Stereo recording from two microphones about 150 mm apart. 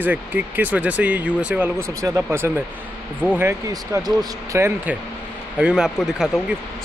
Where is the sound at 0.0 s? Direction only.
10° right (ahead or behind).